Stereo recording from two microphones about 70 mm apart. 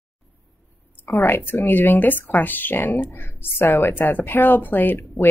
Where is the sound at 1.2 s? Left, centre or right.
Left.